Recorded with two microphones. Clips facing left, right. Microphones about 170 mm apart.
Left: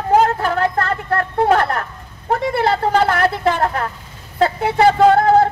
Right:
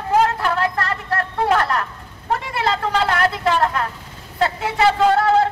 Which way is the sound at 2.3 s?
50° left (ahead or behind).